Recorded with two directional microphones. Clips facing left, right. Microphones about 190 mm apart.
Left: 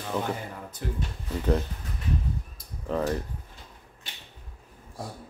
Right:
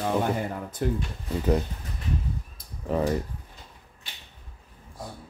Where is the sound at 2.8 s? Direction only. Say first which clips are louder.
Right 2 dB; 10° right (ahead or behind).